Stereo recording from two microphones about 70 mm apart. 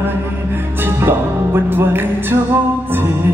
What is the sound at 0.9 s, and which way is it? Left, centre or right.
Music, right.